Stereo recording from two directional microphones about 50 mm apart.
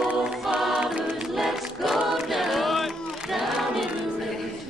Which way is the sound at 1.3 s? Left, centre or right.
Centre.